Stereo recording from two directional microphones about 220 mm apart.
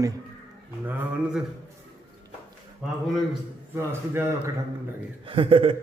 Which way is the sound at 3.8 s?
10° right (ahead or behind).